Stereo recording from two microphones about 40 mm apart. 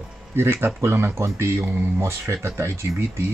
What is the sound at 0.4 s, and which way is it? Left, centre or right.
Speech, right.